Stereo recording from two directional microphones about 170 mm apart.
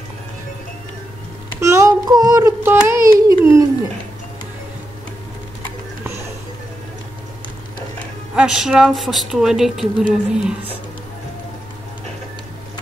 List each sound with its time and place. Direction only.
1.6 s child singing: 15° right (ahead or behind)
8.4 s speech: 5° right (ahead or behind)